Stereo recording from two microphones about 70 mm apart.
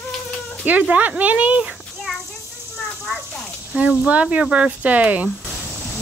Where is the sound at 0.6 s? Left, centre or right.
Right.